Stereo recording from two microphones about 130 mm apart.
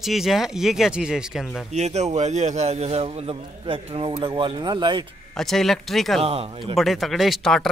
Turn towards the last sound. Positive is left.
turn(degrees=0)  # may be behind; listen again after turning